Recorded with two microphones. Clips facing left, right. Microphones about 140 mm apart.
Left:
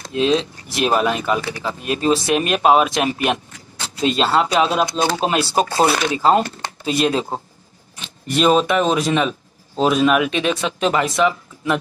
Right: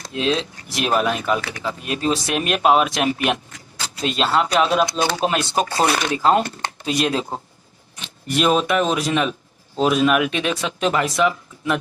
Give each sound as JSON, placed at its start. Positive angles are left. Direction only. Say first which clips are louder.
{"t": 0.0, "sound": "speech", "louder": "left 4 dB", "side_deg": 0}
{"t": 5.0, "sound": "speech", "louder": "left 2 dB", "side_deg": 30}
{"t": 5.3, "sound": "speech", "louder": "left 3 dB", "side_deg": 5}